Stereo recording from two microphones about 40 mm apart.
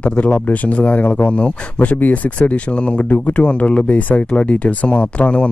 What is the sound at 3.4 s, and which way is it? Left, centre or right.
Speech, left.